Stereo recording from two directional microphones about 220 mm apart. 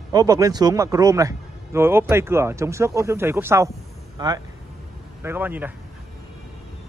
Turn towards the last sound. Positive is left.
turn(degrees=-10)  # may be behind; listen again after turning